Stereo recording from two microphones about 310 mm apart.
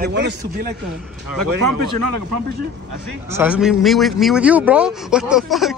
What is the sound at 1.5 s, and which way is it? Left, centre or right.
Speech, right.